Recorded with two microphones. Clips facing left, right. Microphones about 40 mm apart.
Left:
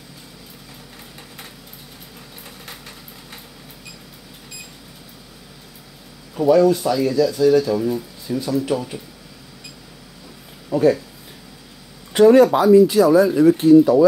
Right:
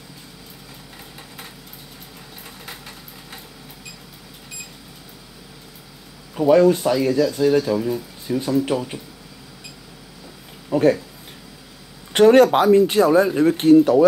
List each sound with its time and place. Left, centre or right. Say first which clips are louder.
6.4 s speech: even; right
10.7 s speech: left 1 dB; right
12.1 s speech: left 1 dB; right
13.6 s speech: right 1 dB; right